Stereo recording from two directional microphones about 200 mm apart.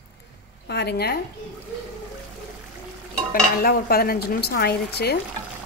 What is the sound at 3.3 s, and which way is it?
Speech, 45° left (ahead or behind).